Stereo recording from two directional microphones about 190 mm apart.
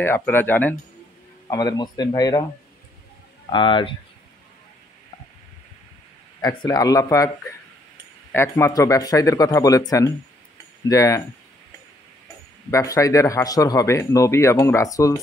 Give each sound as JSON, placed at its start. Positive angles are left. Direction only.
{"t": 0.0, "sound": "speech", "side_deg": 10}
{"t": 1.5, "sound": "speech", "side_deg": 20}
{"t": 3.4, "sound": "speech", "side_deg": 25}
{"t": 6.4, "sound": "speech", "side_deg": 20}
{"t": 8.3, "sound": "speech", "side_deg": 15}
{"t": 12.7, "sound": "speech", "side_deg": 15}